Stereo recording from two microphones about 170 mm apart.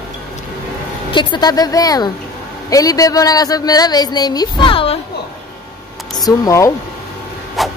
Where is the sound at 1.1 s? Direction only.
25° left (ahead or behind).